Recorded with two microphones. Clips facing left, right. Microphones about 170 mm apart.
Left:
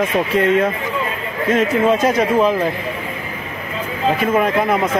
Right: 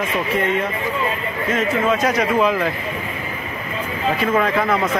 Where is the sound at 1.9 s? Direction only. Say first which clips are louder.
Left 3 dB; 25° left (ahead or behind).